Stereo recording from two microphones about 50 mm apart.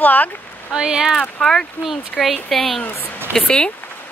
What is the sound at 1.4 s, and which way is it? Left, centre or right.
Speech, centre.